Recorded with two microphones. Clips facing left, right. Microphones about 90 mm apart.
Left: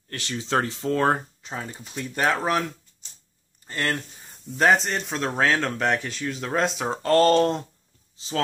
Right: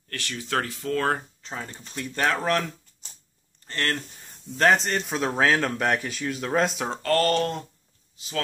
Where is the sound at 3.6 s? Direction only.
10° left (ahead or behind).